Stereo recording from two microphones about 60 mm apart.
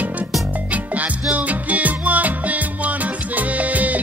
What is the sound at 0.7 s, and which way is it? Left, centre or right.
Music, right.